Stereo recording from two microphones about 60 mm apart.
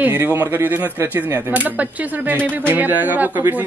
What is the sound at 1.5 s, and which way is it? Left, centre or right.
A man's voice, right.